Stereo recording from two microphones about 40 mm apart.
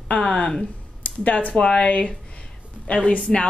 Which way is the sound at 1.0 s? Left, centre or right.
Left.